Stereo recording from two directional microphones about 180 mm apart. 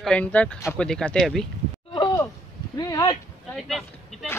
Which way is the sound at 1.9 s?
20° left (ahead or behind).